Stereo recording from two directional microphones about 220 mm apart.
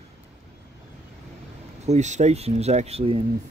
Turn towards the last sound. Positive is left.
turn(degrees=-25)  # may be behind; listen again after turning